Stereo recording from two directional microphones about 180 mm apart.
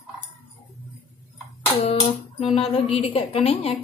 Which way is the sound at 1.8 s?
35° left (ahead or behind).